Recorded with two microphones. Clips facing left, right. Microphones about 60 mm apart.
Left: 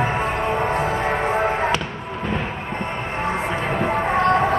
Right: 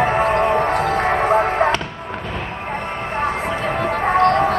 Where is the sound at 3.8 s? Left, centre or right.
Right.